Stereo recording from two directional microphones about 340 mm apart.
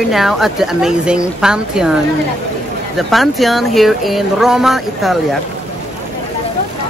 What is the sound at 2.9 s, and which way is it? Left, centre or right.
Speech, centre.